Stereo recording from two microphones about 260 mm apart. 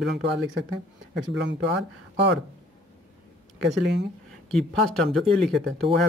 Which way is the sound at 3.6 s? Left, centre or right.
Right.